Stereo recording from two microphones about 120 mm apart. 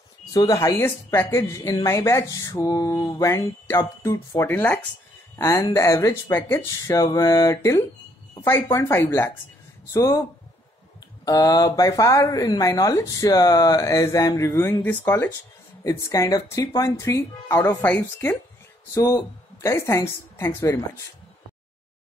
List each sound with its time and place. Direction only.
0.3 s speech: 30° left (ahead or behind)
11.2 s speech: 30° left (ahead or behind)
15.8 s speech: 30° left (ahead or behind)
18.9 s speech: 25° left (ahead or behind)